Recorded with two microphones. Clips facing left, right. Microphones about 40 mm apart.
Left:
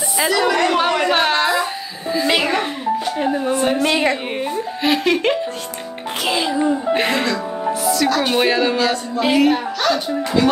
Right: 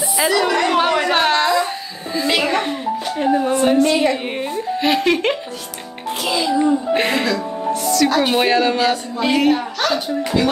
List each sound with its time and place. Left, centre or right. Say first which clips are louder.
0.2 s speech: even; centre
0.7 s a sound: even; centre
2.2 s a child's voice: even; centre
2.5 s music: even; centre
4.4 s speech: right 1 dB; centre
6.2 s a child's voice: right 1 dB; left
6.6 s speech: even; centre
8.1 s speech: even; centre
8.7 s music: even; centre
9.4 s speech: left 1 dB; centre